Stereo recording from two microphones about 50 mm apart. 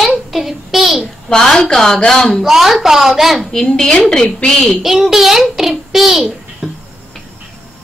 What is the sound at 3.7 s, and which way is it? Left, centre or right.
Speech, centre.